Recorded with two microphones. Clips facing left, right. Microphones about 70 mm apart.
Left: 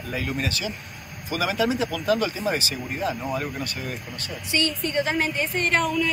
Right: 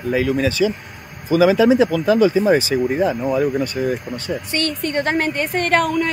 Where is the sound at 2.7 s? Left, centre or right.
Right.